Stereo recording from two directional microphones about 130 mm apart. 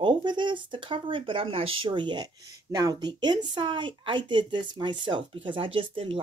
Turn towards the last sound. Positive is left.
turn(degrees=-40)  # may be behind; listen again after turning